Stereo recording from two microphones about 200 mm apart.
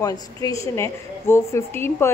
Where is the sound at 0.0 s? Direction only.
15° left (ahead or behind).